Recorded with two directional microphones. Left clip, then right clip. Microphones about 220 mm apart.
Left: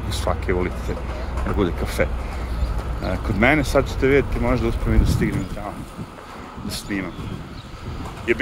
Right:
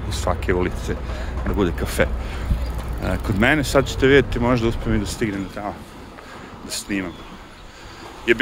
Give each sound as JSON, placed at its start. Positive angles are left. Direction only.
{"t": 0.1, "sound": "speech", "side_deg": -10}
{"t": 6.7, "sound": "speech", "side_deg": -15}
{"t": 8.3, "sound": "speech", "side_deg": -20}